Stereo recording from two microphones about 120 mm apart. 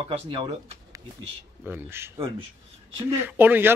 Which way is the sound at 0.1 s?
50° right (ahead or behind).